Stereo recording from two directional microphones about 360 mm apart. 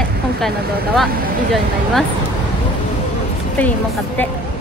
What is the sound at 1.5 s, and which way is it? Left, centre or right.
Speech, centre.